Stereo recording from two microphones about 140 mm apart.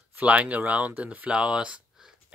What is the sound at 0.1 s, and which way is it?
Speech, 10° right (ahead or behind).